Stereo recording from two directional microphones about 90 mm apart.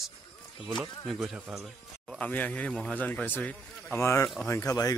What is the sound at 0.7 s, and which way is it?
Speech, centre (ahead or behind).